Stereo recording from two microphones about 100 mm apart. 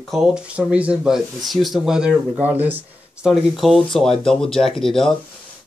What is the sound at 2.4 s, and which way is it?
Speech, 20° right (ahead or behind).